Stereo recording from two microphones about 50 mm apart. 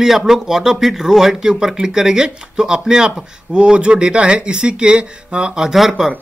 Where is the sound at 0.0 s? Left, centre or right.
Centre.